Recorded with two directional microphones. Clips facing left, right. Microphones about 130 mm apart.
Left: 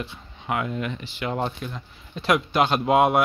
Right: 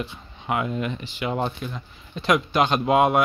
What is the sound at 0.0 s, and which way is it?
Speech, 20° right (ahead or behind).